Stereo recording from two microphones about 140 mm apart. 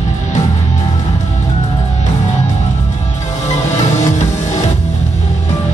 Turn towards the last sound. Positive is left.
turn(degrees=55)  # may be behind; listen again after turning